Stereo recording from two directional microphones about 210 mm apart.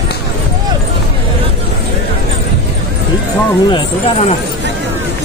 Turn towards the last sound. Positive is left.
turn(degrees=20)  # may be behind; listen again after turning